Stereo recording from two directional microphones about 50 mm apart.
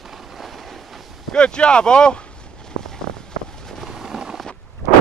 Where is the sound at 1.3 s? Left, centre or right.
Centre.